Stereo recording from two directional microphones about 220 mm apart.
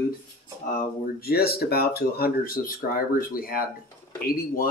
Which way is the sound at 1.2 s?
45° left (ahead or behind).